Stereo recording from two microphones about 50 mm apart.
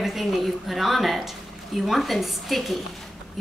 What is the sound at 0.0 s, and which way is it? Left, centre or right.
A woman's voice, centre.